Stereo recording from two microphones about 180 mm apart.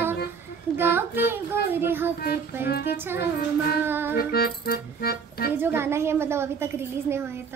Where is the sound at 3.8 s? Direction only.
10° right (ahead or behind).